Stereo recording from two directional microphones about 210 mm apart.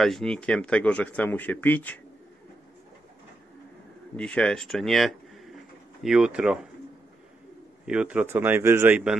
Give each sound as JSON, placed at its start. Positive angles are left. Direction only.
{"t": 0.0, "sound": "speech", "side_deg": 5}
{"t": 4.2, "sound": "speech", "side_deg": 5}
{"t": 7.8, "sound": "a man's voice", "side_deg": -5}